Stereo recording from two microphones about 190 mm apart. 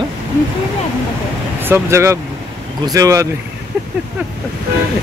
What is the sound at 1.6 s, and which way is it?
Speech, 10° right (ahead or behind).